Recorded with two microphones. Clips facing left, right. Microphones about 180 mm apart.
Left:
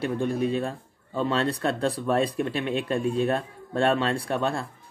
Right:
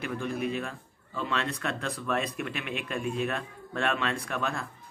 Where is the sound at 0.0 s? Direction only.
30° left (ahead or behind).